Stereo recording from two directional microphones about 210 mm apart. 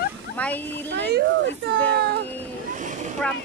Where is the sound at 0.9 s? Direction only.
55° right (ahead or behind).